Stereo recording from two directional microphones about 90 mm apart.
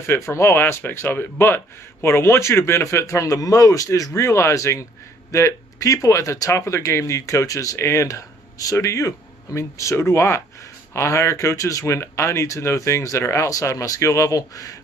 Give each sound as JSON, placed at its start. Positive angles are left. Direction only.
{"t": 0.0, "sound": "speech", "side_deg": 30}